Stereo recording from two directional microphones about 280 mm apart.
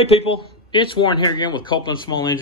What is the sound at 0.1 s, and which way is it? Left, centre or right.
Speech, centre.